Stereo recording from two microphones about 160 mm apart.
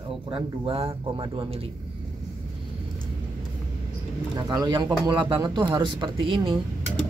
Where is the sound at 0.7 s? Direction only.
35° right (ahead or behind).